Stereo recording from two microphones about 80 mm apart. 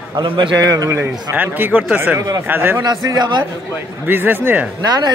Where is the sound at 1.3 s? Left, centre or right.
Right.